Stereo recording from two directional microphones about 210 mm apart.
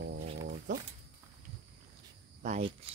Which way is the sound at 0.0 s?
60° right (ahead or behind).